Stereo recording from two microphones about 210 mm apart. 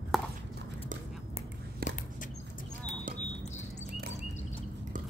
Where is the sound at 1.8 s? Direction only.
45° right (ahead or behind).